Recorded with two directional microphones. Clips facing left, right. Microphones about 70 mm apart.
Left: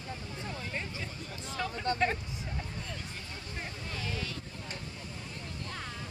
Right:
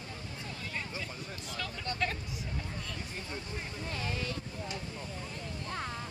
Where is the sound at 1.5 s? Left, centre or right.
Left.